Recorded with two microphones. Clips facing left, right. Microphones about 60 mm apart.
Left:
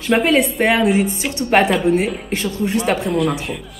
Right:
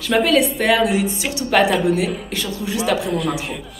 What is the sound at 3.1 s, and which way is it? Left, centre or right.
Speech, centre.